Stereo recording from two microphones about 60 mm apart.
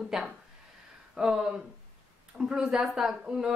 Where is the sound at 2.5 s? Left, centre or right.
Centre.